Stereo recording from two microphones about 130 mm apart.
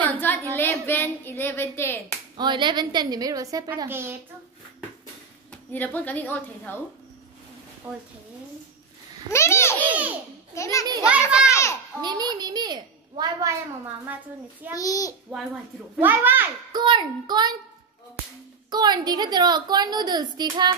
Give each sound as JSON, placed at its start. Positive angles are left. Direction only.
{"t": 0.0, "sound": "a sound", "side_deg": 15}
{"t": 0.6, "sound": "speech", "side_deg": 15}
{"t": 2.3, "sound": "a woman's voice", "side_deg": -35}
{"t": 5.7, "sound": "speech", "side_deg": 15}
{"t": 7.8, "sound": "a child's voice", "side_deg": -15}
{"t": 9.3, "sound": "a child's voice", "side_deg": 20}
{"t": 11.1, "sound": "a child's voice", "side_deg": -10}
{"t": 11.4, "sound": "children playing", "side_deg": 20}
{"t": 12.0, "sound": "a woman's voice", "side_deg": -35}
{"t": 14.7, "sound": "a child's voice", "side_deg": 25}
{"t": 16.0, "sound": "a child's voice", "side_deg": -15}
{"t": 16.7, "sound": "a woman's voice", "side_deg": -35}
{"t": 18.7, "sound": "a woman's voice", "side_deg": -30}